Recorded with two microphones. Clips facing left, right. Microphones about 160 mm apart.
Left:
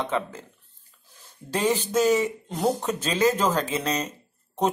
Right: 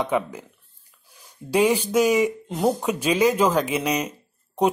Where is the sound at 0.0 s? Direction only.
15° right (ahead or behind).